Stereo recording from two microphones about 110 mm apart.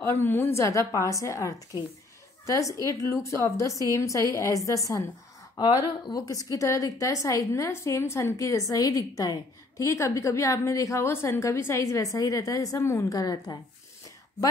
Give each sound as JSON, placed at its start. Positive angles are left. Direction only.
{"t": 0.0, "sound": "a woman's voice", "side_deg": 20}
{"t": 5.6, "sound": "speech", "side_deg": 45}
{"t": 6.2, "sound": "a woman's voice", "side_deg": 30}